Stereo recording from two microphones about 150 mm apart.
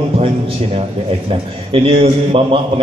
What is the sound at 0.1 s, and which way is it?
A man's voice, 40° right (ahead or behind).